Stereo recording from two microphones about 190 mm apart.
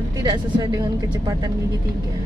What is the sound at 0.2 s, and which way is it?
Speech, 20° right (ahead or behind).